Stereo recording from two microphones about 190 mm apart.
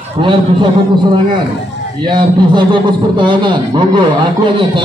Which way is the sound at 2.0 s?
25° right (ahead or behind).